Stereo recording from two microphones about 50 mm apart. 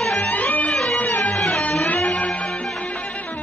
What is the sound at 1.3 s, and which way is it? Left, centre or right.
Music, centre.